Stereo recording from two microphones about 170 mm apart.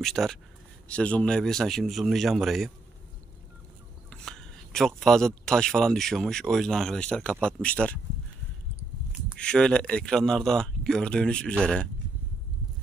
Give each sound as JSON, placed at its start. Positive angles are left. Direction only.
{"t": 0.0, "sound": "a man's voice", "side_deg": 0}
{"t": 4.1, "sound": "speech", "side_deg": 5}
{"t": 9.4, "sound": "a man's voice", "side_deg": 5}